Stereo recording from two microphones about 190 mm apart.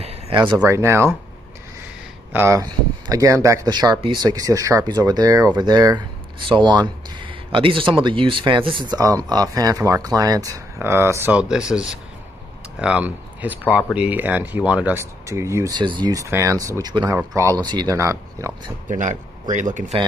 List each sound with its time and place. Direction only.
0.0 s a sound: 30° right (ahead or behind)
0.6 s speech: 15° right (ahead or behind)
2.3 s speech: 15° right (ahead or behind)
18.9 s speech: 40° right (ahead or behind)